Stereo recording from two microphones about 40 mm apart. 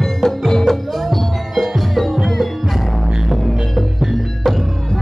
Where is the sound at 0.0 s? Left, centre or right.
Centre.